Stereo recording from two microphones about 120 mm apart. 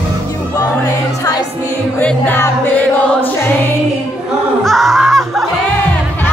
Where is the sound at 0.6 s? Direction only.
30° left (ahead or behind).